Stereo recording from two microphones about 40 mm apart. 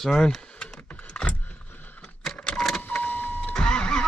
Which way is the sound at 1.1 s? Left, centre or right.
Left.